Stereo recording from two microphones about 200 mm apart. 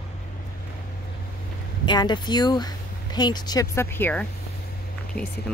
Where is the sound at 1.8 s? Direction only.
20° left (ahead or behind); by 5.3 s 5° left (ahead or behind).